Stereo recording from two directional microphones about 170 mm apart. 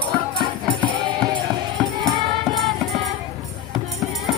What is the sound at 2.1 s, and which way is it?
Music, centre (ahead or behind).